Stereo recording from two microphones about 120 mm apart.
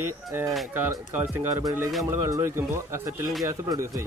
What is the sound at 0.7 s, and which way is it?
Speech, 15° right (ahead or behind).